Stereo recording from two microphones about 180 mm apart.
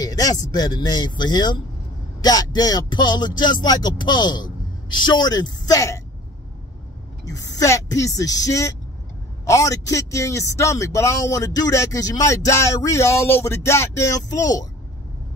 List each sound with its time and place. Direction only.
0.0 s speech: 20° left (ahead or behind)
7.2 s a man's voice: 20° left (ahead or behind)